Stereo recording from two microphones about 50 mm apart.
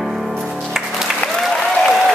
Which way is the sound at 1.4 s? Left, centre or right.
Centre.